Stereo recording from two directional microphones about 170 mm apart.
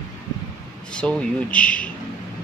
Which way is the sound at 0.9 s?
5° left (ahead or behind).